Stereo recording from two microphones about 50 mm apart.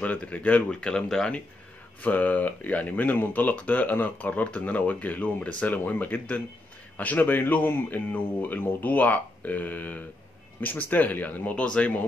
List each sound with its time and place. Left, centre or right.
0.0 s speech: left
0.7 s speech: centre
2.0 s speech: left
11.5 s speech: left